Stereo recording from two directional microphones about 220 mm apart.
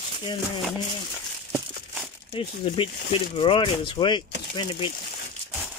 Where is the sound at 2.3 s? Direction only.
25° left (ahead or behind).